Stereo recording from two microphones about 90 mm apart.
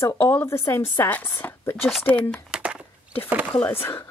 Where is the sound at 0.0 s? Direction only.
30° left (ahead or behind).